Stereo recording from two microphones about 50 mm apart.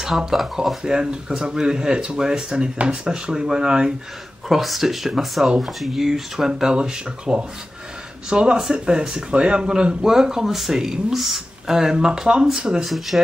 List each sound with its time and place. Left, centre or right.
0.0 s speech: centre
4.5 s speech: centre
12.8 s speech: centre